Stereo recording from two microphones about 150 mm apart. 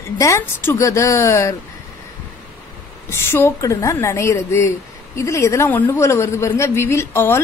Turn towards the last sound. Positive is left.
turn(degrees=15)  # may be behind; listen again after turning